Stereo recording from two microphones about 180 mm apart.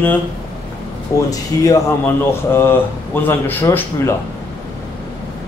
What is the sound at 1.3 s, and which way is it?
Speech, 20° left (ahead or behind).